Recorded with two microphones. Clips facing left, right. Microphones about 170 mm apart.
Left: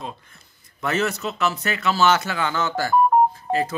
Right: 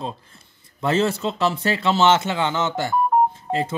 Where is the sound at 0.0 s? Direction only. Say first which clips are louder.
Right 4 dB; 30° right (ahead or behind).